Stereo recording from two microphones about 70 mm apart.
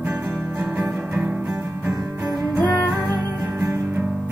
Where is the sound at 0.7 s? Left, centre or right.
Centre.